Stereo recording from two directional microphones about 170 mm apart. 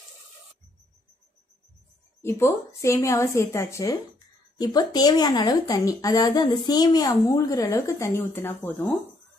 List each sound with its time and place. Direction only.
2.2 s a woman's voice: 15° left (ahead or behind)